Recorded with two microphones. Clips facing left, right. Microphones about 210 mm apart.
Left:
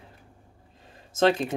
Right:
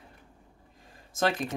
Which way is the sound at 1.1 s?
25° left (ahead or behind).